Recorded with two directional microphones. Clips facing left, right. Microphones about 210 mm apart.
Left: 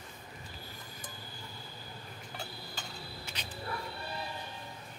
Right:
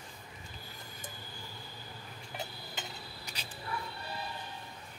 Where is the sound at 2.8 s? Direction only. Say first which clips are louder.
Right 4 dB; 20° right (ahead or behind).